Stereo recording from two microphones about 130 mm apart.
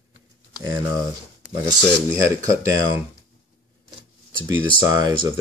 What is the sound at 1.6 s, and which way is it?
Speech, 25° right (ahead or behind).